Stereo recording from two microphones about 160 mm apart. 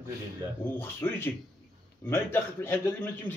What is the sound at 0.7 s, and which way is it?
A man's voice, 15° left (ahead or behind).